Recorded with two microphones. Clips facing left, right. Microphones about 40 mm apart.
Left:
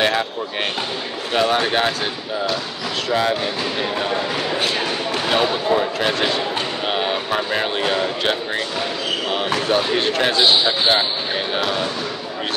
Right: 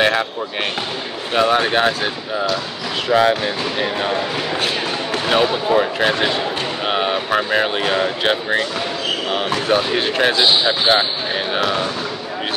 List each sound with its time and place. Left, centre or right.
0.0 s basketball bounce: centre
1.3 s speech: centre
3.1 s speech: right
5.3 s speech: centre
9.3 s speech: centre